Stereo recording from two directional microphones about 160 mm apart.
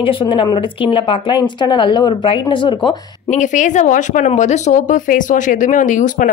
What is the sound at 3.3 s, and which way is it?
Speech, 50° left (ahead or behind).